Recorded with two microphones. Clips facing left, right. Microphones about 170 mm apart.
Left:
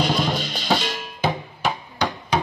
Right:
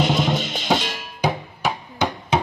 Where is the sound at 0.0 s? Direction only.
20° right (ahead or behind).